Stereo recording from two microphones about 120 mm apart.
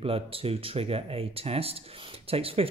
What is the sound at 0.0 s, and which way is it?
Speech, 50° right (ahead or behind).